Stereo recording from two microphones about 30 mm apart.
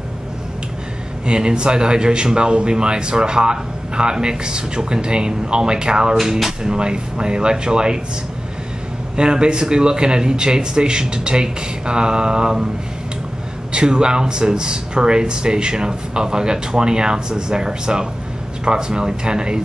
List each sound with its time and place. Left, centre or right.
1.2 s a man's voice: right
9.1 s a man's voice: right
13.7 s a man's voice: right